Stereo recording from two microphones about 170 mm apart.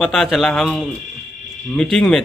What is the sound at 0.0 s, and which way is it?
Speech, centre (ahead or behind).